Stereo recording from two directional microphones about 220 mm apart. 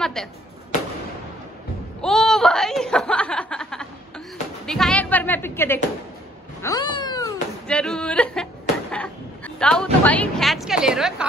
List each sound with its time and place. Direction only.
0.0 s speech: centre (ahead or behind)
2.0 s chuckle: centre (ahead or behind)
4.6 s a sound: 5° left (ahead or behind)
6.6 s cat: 15° left (ahead or behind)
7.6 s speech: 5° left (ahead or behind)
8.9 s a sound: 5° left (ahead or behind)
10.0 s a woman's voice: 5° left (ahead or behind)